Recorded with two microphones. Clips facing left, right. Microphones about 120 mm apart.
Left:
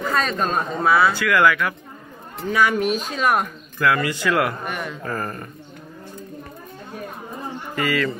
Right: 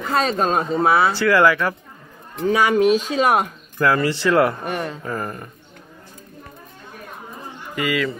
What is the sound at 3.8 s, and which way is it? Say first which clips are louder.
Speech: right 2 dB; 30° right (ahead or behind).